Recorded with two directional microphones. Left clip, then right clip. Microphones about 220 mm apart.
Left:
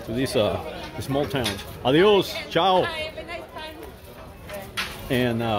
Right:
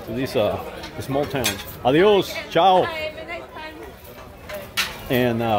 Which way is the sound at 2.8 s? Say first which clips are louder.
Right 2 dB; 55° left (ahead or behind).